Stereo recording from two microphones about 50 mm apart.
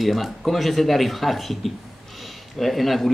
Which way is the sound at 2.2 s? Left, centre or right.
Centre.